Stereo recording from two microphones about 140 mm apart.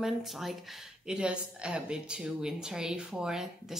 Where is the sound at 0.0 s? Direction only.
Centre (ahead or behind).